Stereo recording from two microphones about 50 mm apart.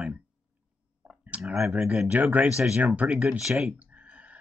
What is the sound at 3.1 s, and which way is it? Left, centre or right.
Speech, centre.